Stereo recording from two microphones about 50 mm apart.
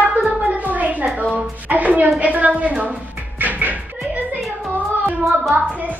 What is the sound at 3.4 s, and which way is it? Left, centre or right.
Music, right.